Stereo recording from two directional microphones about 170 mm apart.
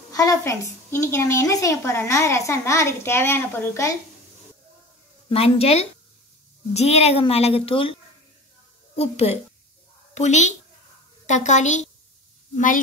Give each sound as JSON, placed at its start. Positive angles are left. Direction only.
{"t": 0.1, "sound": "a woman's voice", "side_deg": 20}
{"t": 5.3, "sound": "a woman's voice", "side_deg": 35}
{"t": 8.9, "sound": "a woman's voice", "side_deg": 35}